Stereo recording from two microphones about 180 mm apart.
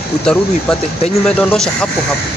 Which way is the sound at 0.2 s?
5° left (ahead or behind).